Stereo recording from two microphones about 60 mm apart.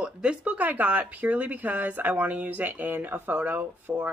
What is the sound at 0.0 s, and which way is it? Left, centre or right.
Speech, centre.